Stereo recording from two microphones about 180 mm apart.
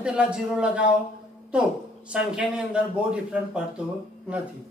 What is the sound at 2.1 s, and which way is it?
A man's voice, 5° right (ahead or behind).